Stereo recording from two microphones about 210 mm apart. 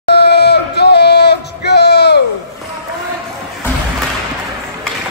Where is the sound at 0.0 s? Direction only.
50° left (ahead or behind).